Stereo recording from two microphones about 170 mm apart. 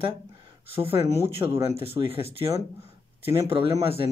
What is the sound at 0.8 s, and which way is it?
Speech, 40° right (ahead or behind).